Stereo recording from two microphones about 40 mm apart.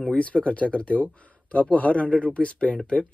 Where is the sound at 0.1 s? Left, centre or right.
Left.